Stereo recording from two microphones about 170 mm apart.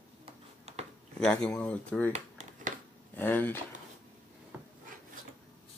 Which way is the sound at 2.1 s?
45° right (ahead or behind).